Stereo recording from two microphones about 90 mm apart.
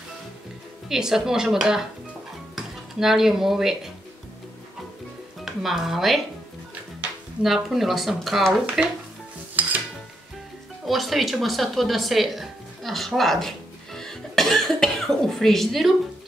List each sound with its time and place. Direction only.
0.8 s speech: 5° right (ahead or behind)
5.4 s speech: 5° right (ahead or behind)
7.4 s speech: centre (ahead or behind)
9.6 s dishes: 20° right (ahead or behind)
10.9 s speech: centre (ahead or behind)